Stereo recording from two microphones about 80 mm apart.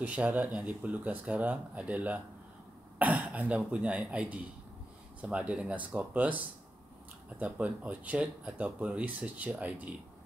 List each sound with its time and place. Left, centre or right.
0.0 s speech: centre